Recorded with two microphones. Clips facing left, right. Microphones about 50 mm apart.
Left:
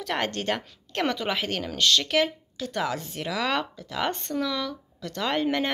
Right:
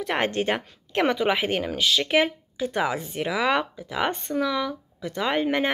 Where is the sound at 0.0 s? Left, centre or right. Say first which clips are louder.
Right 4 dB; centre.